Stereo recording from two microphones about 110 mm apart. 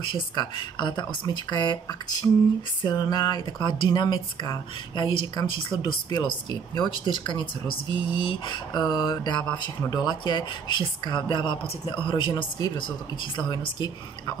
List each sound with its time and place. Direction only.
0.1 s a woman's voice: 45° left (ahead or behind)
2.8 s a woman's voice: 40° left (ahead or behind)